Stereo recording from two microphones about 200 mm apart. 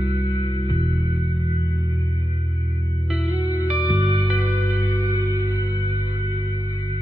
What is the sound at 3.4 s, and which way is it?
Music, 10° right (ahead or behind).